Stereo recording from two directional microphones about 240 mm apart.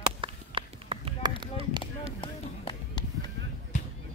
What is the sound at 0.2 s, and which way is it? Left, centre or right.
Run, right.